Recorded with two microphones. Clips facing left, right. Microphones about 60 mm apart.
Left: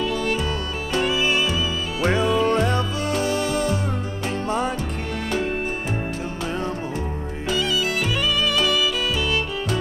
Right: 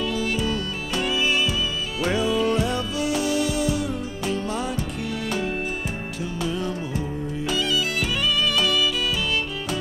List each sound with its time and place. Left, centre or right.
0.0 s music: centre
2.0 s music: left
6.4 s music: left
8.5 s music: centre